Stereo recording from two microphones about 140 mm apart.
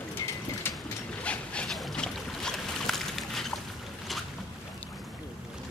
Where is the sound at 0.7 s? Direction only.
15° left (ahead or behind).